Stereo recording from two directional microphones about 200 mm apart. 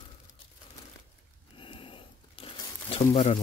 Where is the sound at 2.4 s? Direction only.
25° left (ahead or behind).